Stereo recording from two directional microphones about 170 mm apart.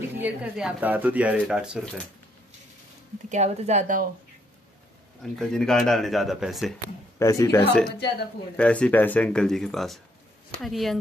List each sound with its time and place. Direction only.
0.1 s speech: 10° right (ahead or behind)
3.3 s speech: 40° right (ahead or behind)
5.2 s speech: 5° left (ahead or behind)
7.2 s speech: 20° left (ahead or behind)
8.5 s speech: 5° left (ahead or behind)